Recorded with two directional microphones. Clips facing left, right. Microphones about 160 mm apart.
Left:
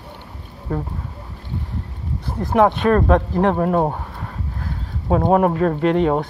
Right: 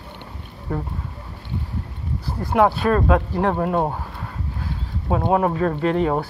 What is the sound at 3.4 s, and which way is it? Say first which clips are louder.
Speech: left 3 dB; 35° left (ahead or behind).